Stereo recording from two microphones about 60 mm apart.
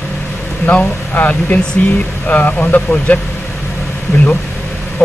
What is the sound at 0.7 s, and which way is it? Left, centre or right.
Speech, left.